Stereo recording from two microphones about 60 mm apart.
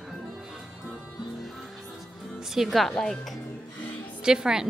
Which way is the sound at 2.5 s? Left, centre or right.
Centre.